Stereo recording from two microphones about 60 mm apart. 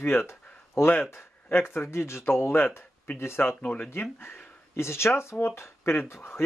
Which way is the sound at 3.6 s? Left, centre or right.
Left.